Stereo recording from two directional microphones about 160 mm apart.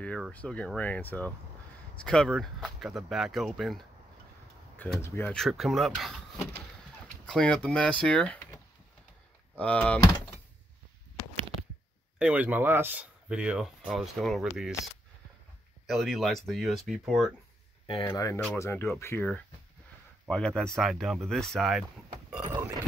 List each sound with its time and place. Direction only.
0.3 s speech: 10° left (ahead or behind)
5.3 s speech: centre (ahead or behind)
7.2 s speech: 5° left (ahead or behind)
9.6 s speech: 10° left (ahead or behind)
12.2 s speech: 10° right (ahead or behind)
15.9 s speech: centre (ahead or behind)
17.8 s speech: 30° left (ahead or behind)
20.2 s speech: 5° left (ahead or behind)
22.5 s a sound: 20° right (ahead or behind)